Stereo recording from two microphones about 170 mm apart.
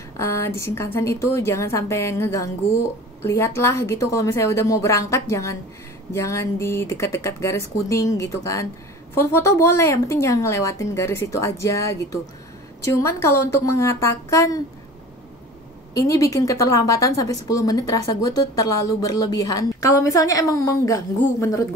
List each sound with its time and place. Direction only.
0.2 s speech: 15° left (ahead or behind)
15.9 s a woman's voice: 20° left (ahead or behind)